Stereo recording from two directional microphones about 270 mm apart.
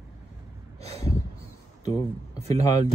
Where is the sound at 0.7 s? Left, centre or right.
Right.